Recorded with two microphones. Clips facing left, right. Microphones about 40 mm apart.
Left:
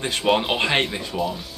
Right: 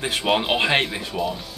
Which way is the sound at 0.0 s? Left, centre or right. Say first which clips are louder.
Left 1 dB; centre.